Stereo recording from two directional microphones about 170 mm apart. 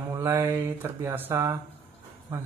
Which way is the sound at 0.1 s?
20° right (ahead or behind).